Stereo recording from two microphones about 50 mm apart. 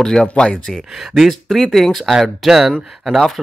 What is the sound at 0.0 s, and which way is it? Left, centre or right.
Speech, centre.